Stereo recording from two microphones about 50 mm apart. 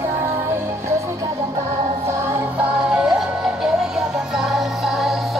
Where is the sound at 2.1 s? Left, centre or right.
Right.